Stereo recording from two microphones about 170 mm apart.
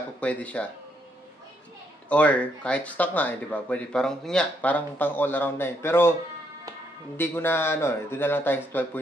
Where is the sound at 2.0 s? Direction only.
10° left (ahead or behind).